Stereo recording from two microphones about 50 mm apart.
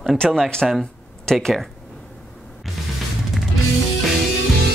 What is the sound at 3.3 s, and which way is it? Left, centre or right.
Music, centre.